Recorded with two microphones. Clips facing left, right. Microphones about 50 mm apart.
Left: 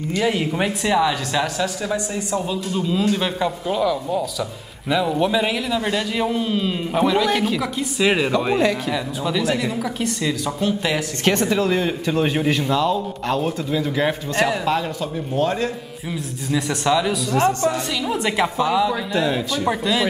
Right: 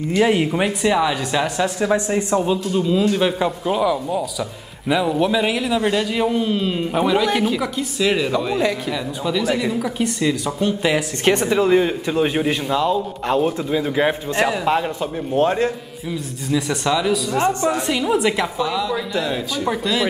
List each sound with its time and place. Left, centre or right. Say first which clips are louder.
0.1 s speech: right 4 dB; centre
1.8 s a man's voice: right 6 dB; right
2.7 s a man's voice: even; centre
8.0 s speech: left 1 dB; centre
8.5 s a man's voice: left 1 dB; centre; by 15.7 s right
16.4 s a man's voice: even; centre
17.3 s speech: even; centre
18.1 s speech: left 1 dB; centre
19.1 s a man's voice: left 2 dB; centre